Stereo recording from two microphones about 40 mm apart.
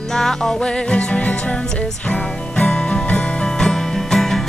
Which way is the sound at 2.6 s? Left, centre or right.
Left.